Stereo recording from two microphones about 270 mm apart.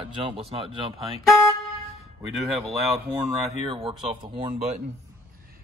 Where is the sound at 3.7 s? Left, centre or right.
Centre.